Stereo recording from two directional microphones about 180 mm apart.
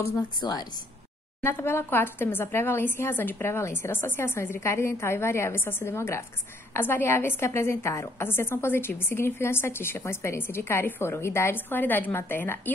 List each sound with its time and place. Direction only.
0.4 s a woman's voice: 20° left (ahead or behind)